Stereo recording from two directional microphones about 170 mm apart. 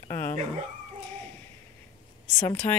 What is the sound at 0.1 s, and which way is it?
Dog, 15° left (ahead or behind).